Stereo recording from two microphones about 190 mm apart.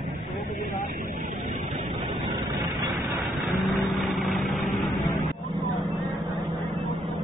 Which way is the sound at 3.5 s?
Centre (ahead or behind).